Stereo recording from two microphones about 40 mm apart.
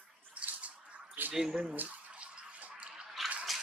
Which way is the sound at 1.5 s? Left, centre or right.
Right.